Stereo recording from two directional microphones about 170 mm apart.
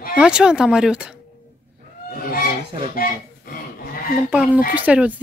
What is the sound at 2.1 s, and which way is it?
Speech, 60° left (ahead or behind).